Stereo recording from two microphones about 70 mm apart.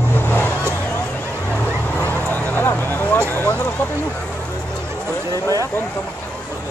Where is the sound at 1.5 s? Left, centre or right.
Left.